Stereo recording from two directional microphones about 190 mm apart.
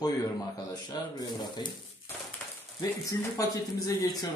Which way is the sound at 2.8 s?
20° left (ahead or behind).